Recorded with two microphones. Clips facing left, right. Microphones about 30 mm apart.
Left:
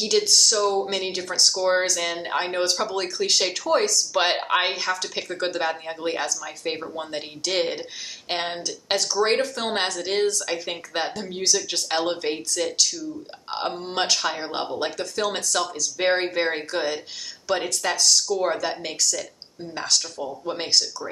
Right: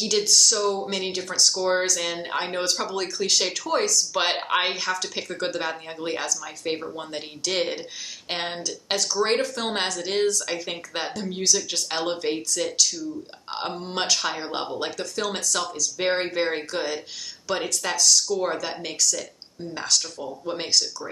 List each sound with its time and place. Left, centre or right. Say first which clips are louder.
0.0 s speech: left 1 dB; centre
0.7 s speech: left 3 dB; centre